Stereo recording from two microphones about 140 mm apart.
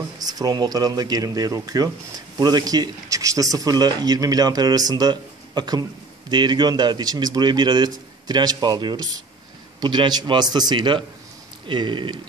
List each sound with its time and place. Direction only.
0.2 s speech: 25° right (ahead or behind)